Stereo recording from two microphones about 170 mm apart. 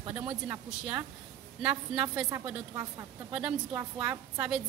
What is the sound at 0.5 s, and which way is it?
Speech, 15° right (ahead or behind).